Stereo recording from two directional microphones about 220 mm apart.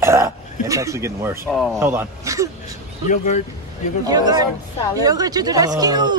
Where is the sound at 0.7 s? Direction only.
15° right (ahead or behind).